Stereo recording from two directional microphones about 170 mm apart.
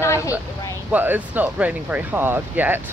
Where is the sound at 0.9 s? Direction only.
10° right (ahead or behind).